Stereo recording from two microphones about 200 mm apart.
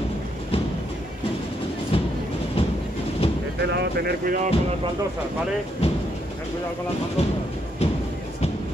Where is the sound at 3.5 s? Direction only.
55° right (ahead or behind).